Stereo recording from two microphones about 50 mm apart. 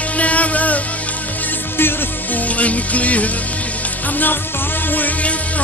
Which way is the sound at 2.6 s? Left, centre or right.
Left.